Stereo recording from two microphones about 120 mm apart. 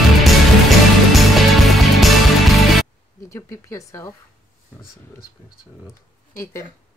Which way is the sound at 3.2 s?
25° left (ahead or behind).